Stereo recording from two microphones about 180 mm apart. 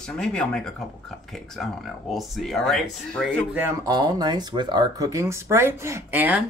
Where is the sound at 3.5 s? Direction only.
15° right (ahead or behind).